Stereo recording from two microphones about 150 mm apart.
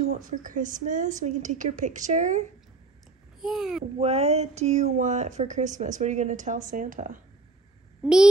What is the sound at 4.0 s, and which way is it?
Speech, 45° right (ahead or behind).